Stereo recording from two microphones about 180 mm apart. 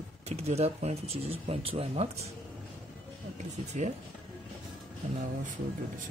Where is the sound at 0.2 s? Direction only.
35° right (ahead or behind).